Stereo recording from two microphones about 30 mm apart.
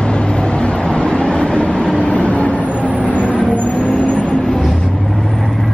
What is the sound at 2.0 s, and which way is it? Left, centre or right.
Vehicle, left.